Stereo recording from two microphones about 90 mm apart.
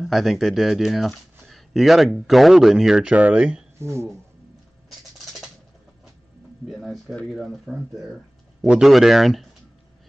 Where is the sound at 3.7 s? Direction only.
30° right (ahead or behind).